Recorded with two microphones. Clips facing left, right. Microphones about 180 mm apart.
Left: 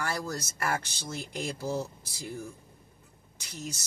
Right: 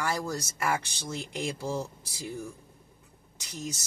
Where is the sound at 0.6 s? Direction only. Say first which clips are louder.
Right 2 dB; 15° right (ahead or behind).